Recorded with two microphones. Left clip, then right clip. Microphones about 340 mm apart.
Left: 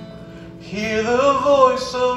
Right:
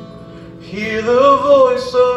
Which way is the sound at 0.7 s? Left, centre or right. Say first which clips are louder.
Right 4 dB; centre.